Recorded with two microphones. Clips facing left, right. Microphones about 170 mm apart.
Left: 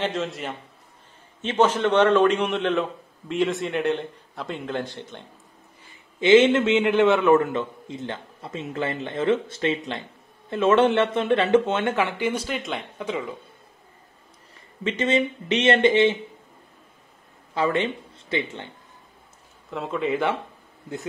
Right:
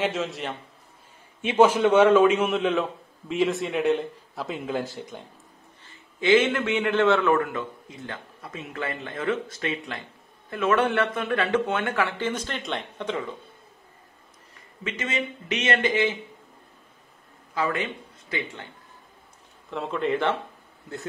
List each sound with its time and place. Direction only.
0.0 s a man's voice: centre (ahead or behind)
1.4 s a man's voice: 10° right (ahead or behind)
5.9 s a man's voice: 20° left (ahead or behind)
14.8 s a man's voice: 30° left (ahead or behind)
17.6 s speech: 30° left (ahead or behind)
19.7 s a man's voice: centre (ahead or behind)